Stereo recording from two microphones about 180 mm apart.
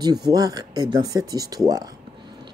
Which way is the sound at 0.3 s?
20° right (ahead or behind).